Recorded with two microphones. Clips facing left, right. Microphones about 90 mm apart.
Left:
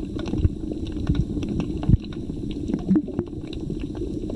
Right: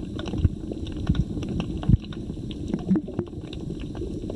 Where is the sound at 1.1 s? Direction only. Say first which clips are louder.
Left 3 dB; 45° right (ahead or behind).